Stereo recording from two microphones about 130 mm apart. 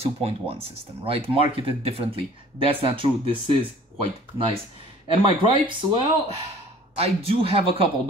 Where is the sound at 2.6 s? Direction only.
45° right (ahead or behind).